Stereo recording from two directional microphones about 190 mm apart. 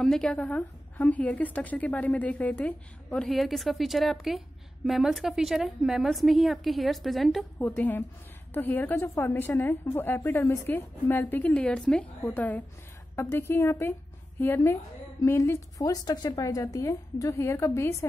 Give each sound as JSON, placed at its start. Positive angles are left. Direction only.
{"t": 0.0, "sound": "a woman's voice", "side_deg": 5}